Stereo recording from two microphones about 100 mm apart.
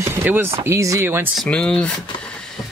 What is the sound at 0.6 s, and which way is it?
Speech, 30° right (ahead or behind).